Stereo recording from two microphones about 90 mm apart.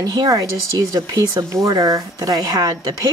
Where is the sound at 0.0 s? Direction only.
45° right (ahead or behind).